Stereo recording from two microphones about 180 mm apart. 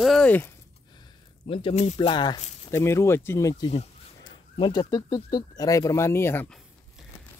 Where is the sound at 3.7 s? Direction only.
35° left (ahead or behind).